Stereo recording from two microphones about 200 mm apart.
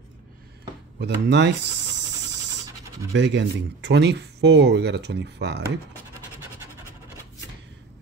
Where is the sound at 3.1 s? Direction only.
60° right (ahead or behind).